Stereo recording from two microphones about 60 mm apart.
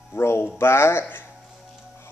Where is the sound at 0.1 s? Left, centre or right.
Left.